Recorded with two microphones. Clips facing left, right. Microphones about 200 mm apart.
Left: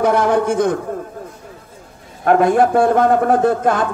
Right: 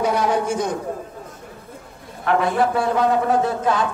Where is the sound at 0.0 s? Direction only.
55° left (ahead or behind).